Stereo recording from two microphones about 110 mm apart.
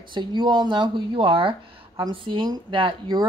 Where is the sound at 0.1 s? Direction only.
45° right (ahead or behind).